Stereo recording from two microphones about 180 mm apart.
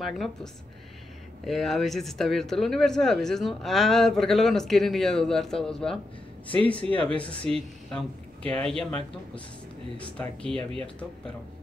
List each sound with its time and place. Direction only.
0.0 s speech: centre (ahead or behind)
6.8 s speech: 30° left (ahead or behind)
7.2 s speech: 5° left (ahead or behind)
10.5 s speech: 30° right (ahead or behind)